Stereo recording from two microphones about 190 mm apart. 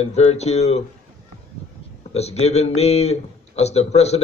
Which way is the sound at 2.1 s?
35° left (ahead or behind).